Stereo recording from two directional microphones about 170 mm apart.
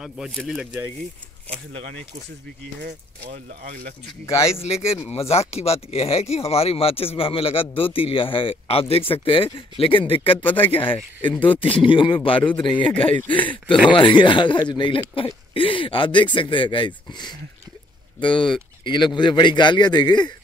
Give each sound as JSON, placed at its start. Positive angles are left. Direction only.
{"t": 0.0, "sound": "speech", "side_deg": 0}
{"t": 2.8, "sound": "speech", "side_deg": -70}
{"t": 4.8, "sound": "speech", "side_deg": 15}
{"t": 5.3, "sound": "speech", "side_deg": 35}